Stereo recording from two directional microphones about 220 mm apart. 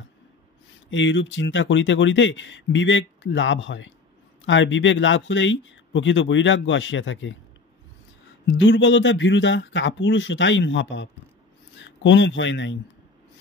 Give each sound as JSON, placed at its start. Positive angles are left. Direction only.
{"t": 0.8, "sound": "speech", "side_deg": 55}
{"t": 8.5, "sound": "speech", "side_deg": 55}